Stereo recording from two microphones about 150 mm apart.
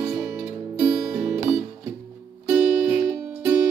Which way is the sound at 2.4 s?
10° right (ahead or behind).